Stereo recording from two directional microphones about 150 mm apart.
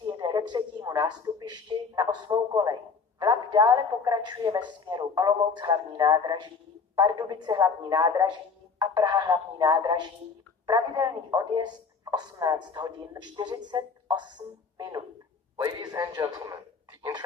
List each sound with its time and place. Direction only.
0.0 s a woman's voice: 30° right (ahead or behind)
15.5 s speech: 25° right (ahead or behind)